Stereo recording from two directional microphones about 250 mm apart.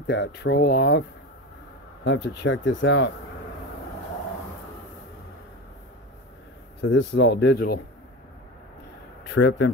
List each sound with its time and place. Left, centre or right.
0.0 s speech: left
2.0 s speech: left
6.8 s speech: left
9.3 s speech: left